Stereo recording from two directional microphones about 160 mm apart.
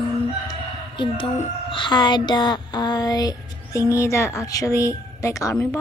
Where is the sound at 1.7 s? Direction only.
30° left (ahead or behind).